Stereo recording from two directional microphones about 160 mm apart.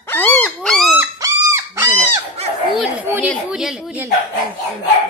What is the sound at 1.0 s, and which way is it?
Dog, 20° right (ahead or behind).